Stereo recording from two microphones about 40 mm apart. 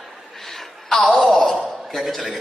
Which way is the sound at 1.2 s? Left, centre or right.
Left.